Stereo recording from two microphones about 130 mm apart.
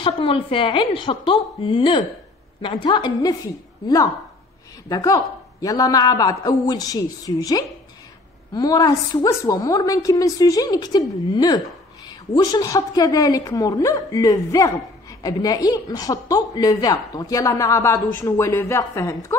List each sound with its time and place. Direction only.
0.0 s a woman's voice: 40° left (ahead or behind); by 19.3 s 25° left (ahead or behind)